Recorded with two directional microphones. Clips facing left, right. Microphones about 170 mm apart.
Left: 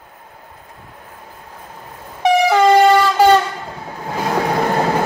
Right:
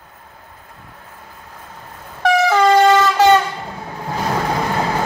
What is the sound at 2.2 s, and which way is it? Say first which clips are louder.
Vehicle: left 1 dB; 15° left (ahead or behind).